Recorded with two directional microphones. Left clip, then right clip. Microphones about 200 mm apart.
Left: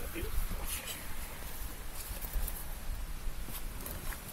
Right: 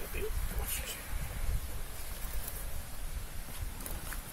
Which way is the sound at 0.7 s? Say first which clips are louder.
Right 1 dB; 25° right (ahead or behind).